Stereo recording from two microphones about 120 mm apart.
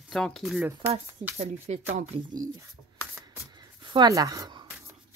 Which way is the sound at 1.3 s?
70° right (ahead or behind).